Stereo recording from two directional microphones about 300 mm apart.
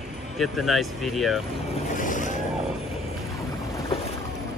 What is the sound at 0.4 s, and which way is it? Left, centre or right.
Speech, centre.